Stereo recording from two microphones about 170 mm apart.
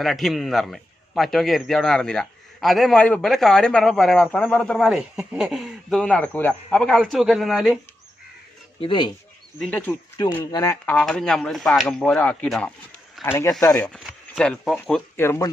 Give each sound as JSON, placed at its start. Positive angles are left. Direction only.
{"t": 0.0, "sound": "a man's voice", "side_deg": 0}
{"t": 8.8, "sound": "speech", "side_deg": 25}
{"t": 9.6, "sound": "speech", "side_deg": 10}
{"t": 10.2, "sound": "speech", "side_deg": 20}
{"t": 13.9, "sound": "a man's voice", "side_deg": 0}
{"t": 15.1, "sound": "speech", "side_deg": 15}